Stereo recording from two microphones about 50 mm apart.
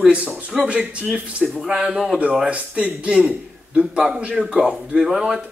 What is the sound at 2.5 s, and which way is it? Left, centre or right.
A man's voice, right.